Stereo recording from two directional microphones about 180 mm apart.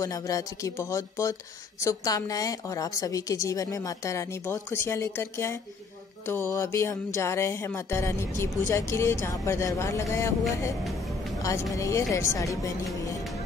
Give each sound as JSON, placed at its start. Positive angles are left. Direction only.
{"t": 0.0, "sound": "a woman's voice", "side_deg": 20}
{"t": 11.4, "sound": "a woman's voice", "side_deg": 20}